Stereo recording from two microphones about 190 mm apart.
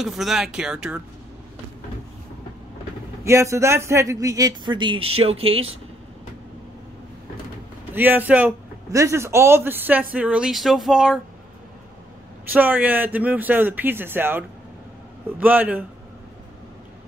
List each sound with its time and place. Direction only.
0.0 s speech: centre (ahead or behind)
3.3 s speech: 15° right (ahead or behind); by 5.7 s 30° right (ahead or behind)
7.9 s a man's voice: 10° right (ahead or behind)
12.5 s a man's voice: 10° right (ahead or behind)